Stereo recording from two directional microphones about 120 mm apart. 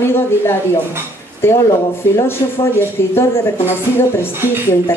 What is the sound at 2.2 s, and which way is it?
A woman's voice, 20° left (ahead or behind).